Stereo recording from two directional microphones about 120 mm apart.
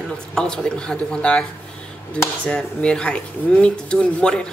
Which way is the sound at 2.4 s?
5° left (ahead or behind).